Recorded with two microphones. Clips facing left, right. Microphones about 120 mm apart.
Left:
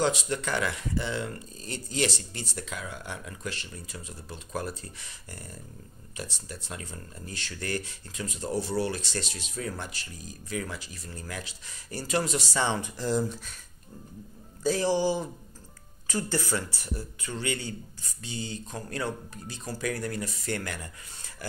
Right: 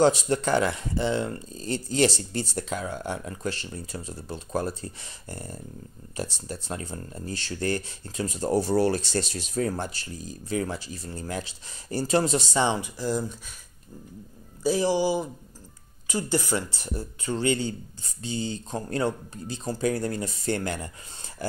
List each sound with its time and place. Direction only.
0.0 s speech: 35° right (ahead or behind); by 12.9 s 20° right (ahead or behind)
12.9 s speech: centre (ahead or behind)
14.6 s speech: 10° right (ahead or behind); by 21.5 s 30° right (ahead or behind)